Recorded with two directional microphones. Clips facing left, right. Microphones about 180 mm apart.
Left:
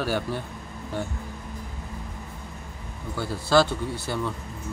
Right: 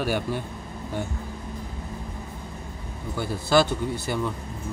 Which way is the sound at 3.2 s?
20° right (ahead or behind).